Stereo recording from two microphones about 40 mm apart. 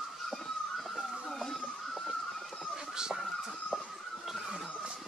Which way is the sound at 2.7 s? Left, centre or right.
Centre.